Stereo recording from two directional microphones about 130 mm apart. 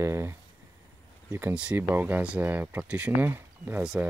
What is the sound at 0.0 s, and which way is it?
Speech, 20° right (ahead or behind).